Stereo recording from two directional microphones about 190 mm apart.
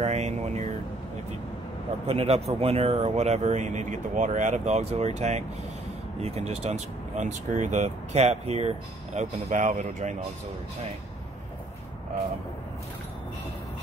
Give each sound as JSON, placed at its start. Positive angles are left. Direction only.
{"t": 0.0, "sound": "speech", "side_deg": -35}
{"t": 2.0, "sound": "speech", "side_deg": -35}